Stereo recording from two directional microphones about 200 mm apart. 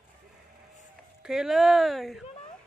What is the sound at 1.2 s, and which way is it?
Speech, centre (ahead or behind).